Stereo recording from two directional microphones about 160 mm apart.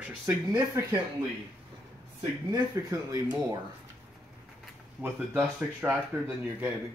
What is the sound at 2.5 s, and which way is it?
Speech, 20° right (ahead or behind).